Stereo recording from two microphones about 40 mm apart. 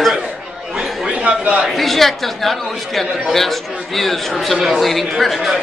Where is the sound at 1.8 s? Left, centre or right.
Centre.